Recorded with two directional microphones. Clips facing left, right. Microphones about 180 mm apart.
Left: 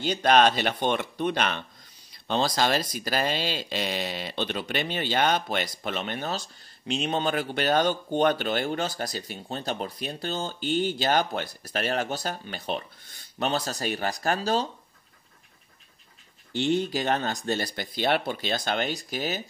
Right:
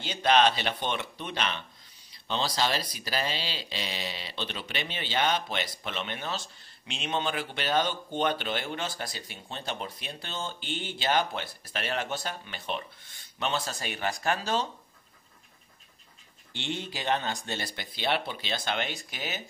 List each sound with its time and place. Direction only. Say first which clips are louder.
0.0 s speech: left 3 dB; 45° left (ahead or behind)
16.5 s speech: left 10 dB; 40° left (ahead or behind)